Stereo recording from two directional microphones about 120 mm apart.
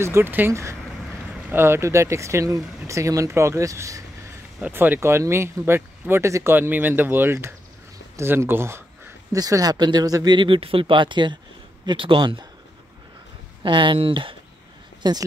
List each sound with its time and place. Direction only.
0.0 s speech: 20° right (ahead or behind)
4.6 s speech: 15° right (ahead or behind)
8.2 s a sound: 20° right (ahead or behind)
9.4 s speech: 30° right (ahead or behind)
13.6 s speech: 45° right (ahead or behind)
15.0 s speech: 35° right (ahead or behind)